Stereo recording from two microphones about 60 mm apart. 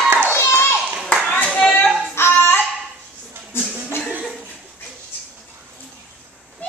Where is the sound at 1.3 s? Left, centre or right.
Left.